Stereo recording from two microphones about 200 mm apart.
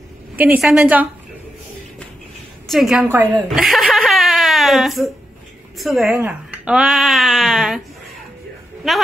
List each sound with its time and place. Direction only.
0.4 s a woman's voice: 5° right (ahead or behind)
2.7 s speech: centre (ahead or behind)
3.4 s chuckle: centre (ahead or behind)
5.8 s speech: centre (ahead or behind)
8.8 s speech: centre (ahead or behind)